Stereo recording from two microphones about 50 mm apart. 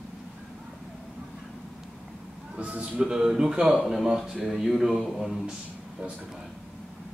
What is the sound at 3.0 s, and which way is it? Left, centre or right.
Speech, centre.